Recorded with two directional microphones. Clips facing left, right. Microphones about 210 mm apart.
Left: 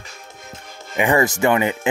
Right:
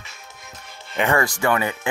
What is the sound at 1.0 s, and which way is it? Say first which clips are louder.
Speech: left 3 dB; 15° left (ahead or behind).